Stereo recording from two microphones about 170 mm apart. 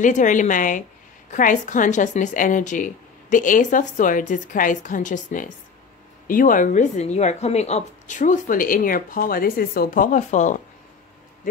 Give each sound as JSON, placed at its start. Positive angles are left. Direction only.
{"t": 0.0, "sound": "speech", "side_deg": 45}